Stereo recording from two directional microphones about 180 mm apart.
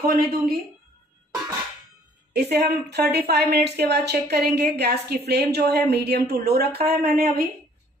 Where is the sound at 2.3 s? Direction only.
65° right (ahead or behind).